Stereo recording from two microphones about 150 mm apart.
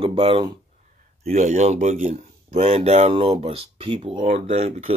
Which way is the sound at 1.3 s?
50° right (ahead or behind).